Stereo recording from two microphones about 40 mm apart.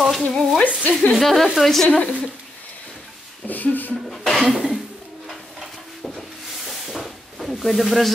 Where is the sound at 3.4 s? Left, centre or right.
Left.